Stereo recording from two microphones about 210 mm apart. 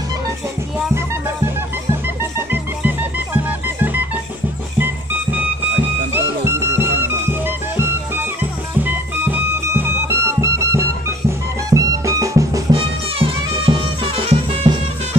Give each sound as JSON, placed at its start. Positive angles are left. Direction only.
{"t": 0.7, "sound": "music", "side_deg": -10}
{"t": 2.5, "sound": "music", "side_deg": -10}